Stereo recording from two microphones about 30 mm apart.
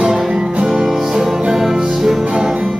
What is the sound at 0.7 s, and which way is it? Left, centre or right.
Music, centre.